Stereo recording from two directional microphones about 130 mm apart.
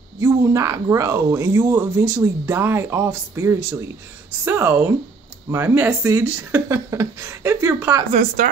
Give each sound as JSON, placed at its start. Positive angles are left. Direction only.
{"t": 0.2, "sound": "speech", "side_deg": -25}
{"t": 8.1, "sound": "a woman's voice", "side_deg": -80}